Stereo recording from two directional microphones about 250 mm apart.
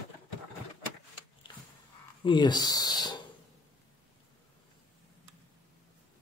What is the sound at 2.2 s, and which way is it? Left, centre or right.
Speech, centre.